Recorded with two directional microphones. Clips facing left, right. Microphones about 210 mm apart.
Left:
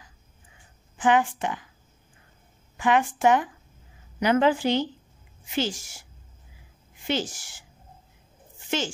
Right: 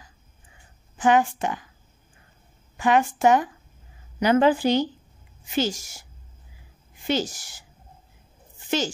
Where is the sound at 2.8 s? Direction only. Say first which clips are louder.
Right 2 dB; 40° right (ahead or behind).